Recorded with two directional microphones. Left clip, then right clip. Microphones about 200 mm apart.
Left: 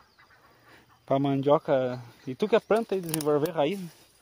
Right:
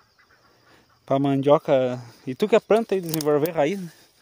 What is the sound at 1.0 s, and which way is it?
Speech, 30° right (ahead or behind).